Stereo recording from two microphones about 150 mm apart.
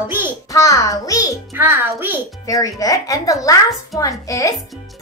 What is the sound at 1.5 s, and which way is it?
Speech, 15° right (ahead or behind).